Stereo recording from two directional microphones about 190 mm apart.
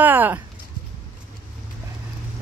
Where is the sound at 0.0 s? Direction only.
10° right (ahead or behind).